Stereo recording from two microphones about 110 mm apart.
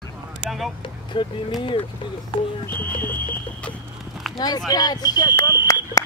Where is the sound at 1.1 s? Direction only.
45° left (ahead or behind).